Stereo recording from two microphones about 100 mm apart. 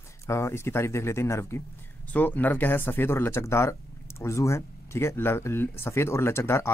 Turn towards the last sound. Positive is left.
turn(degrees=25)  # may be behind; listen again after turning